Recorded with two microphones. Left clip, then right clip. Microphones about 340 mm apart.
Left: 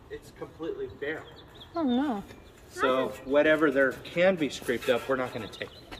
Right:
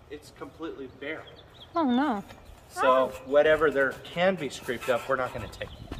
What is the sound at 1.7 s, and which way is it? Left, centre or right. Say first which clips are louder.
Speech: right 3 dB; centre.